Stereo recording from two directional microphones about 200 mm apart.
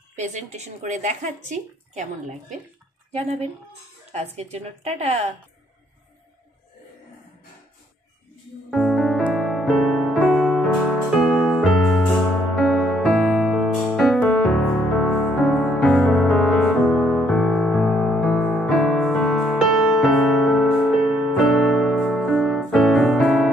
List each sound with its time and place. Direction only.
0.1 s a woman's voice: 35° right (ahead or behind)
3.1 s speech: 30° right (ahead or behind)
4.4 s a woman's voice: 35° right (ahead or behind)
8.6 s music: centre (ahead or behind)